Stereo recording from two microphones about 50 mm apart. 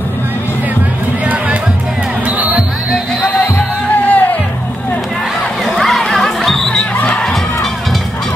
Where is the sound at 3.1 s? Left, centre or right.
Centre.